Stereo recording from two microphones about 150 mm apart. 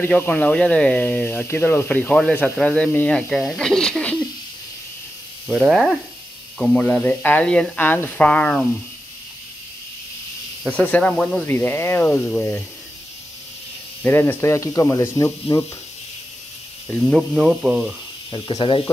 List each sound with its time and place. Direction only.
0.0 s speech: 10° left (ahead or behind)
5.5 s speech: centre (ahead or behind)
10.8 s speech: 10° left (ahead or behind)
14.0 s speech: 15° left (ahead or behind)
16.8 s speech: 5° left (ahead or behind)
18.3 s speech: 35° left (ahead or behind)